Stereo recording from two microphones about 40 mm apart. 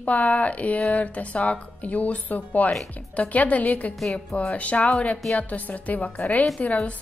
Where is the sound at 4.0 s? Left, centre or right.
Centre.